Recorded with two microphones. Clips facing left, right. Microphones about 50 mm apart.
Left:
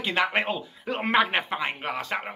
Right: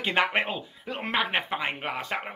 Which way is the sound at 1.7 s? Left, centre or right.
Centre.